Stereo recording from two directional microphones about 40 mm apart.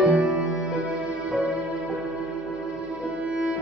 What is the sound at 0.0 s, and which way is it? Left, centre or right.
Music, right.